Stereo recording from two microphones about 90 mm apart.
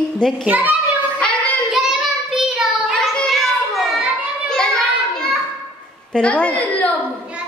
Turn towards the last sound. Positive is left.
turn(degrees=15)  # may be behind; listen again after turning